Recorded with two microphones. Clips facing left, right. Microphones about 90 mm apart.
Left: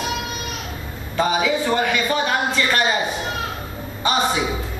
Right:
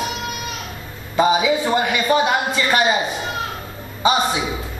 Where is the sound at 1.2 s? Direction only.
15° right (ahead or behind).